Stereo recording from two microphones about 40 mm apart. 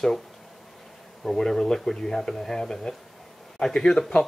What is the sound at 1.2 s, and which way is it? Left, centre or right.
Speech, centre.